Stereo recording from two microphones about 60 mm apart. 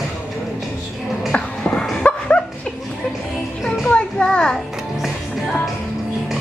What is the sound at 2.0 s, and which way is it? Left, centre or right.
Dog, centre.